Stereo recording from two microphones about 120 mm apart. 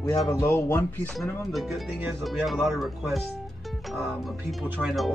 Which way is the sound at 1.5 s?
Centre (ahead or behind).